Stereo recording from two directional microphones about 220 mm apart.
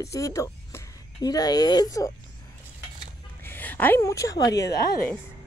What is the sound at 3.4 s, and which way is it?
Speech, 10° left (ahead or behind).